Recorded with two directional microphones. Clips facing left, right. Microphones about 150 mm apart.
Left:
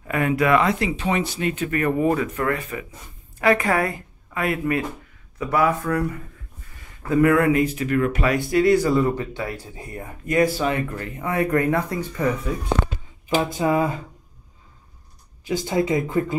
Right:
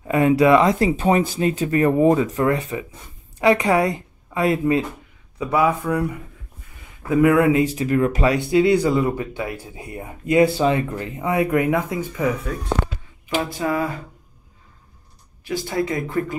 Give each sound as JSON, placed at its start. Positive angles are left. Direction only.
{"t": 0.1, "sound": "a woman's voice", "side_deg": -30}
{"t": 5.4, "sound": "speech", "side_deg": -15}
{"t": 8.5, "sound": "speech", "side_deg": -15}
{"t": 13.4, "sound": "speech", "side_deg": 20}
{"t": 15.4, "sound": "speech", "side_deg": 20}